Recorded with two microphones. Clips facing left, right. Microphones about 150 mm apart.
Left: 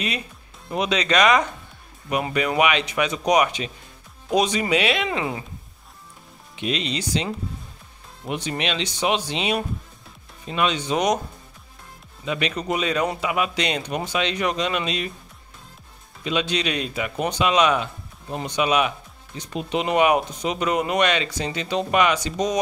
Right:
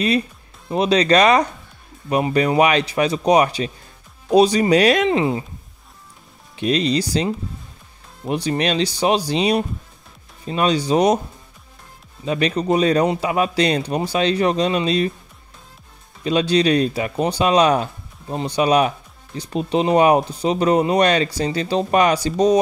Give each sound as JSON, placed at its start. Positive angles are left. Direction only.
{"t": 0.7, "sound": "speech", "side_deg": -35}
{"t": 6.5, "sound": "speech", "side_deg": -40}
{"t": 8.3, "sound": "speech", "side_deg": -35}
{"t": 12.3, "sound": "speech", "side_deg": -35}
{"t": 16.3, "sound": "speech", "side_deg": -35}